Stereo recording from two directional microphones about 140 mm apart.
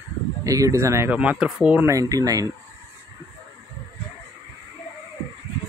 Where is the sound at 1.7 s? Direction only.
20° right (ahead or behind).